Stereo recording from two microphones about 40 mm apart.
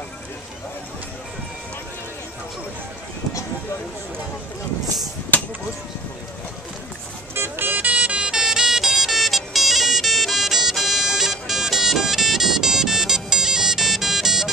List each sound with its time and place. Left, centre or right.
7.3 s vehicle: right
7.8 s music: right
8.4 s music: centre